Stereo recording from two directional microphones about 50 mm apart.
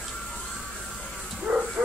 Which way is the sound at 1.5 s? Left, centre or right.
Right.